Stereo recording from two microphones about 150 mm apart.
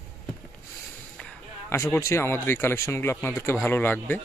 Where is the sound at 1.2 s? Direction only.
15° left (ahead or behind).